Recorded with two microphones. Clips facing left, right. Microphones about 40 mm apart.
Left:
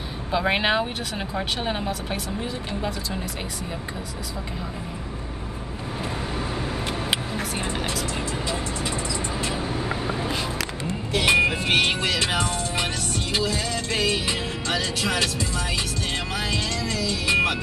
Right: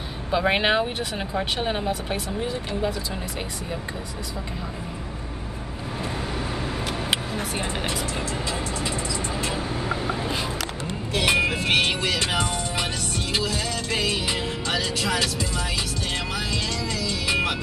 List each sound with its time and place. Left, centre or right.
0.3 s speech: centre
9.4 s vehicle: centre
11.1 s speech: centre
13.3 s music: centre
15.1 s speech: centre
16.3 s music: left